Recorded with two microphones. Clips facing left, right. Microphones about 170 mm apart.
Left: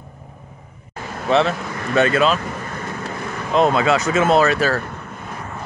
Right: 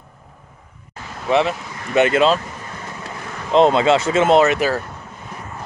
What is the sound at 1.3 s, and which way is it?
Speech, 15° right (ahead or behind).